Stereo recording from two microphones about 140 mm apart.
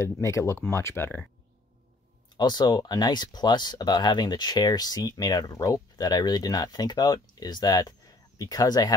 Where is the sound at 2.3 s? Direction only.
30° left (ahead or behind).